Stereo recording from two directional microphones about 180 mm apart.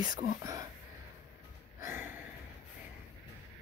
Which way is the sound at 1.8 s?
10° right (ahead or behind).